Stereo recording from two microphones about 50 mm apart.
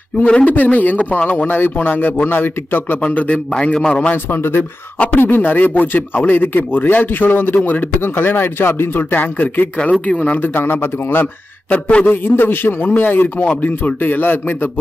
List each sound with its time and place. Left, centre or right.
0.5 s speech: left
1.5 s speech: left
3.0 s speech: left
4.3 s speech: left
9.1 s speech: left
10.4 s a man's voice: left
11.7 s speech: left
12.1 s a man's voice: left